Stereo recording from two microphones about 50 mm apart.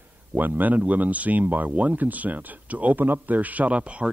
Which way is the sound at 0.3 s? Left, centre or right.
Right.